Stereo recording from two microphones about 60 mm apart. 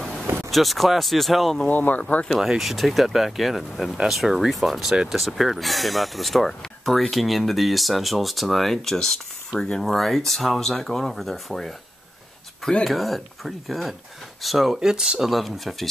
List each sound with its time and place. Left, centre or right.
0.5 s speech: centre
1.7 s speech: left
2.4 s speech: centre
12.8 s speech: centre